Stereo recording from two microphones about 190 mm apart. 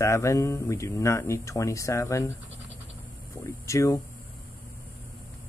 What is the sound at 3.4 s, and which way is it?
Speech, 15° left (ahead or behind).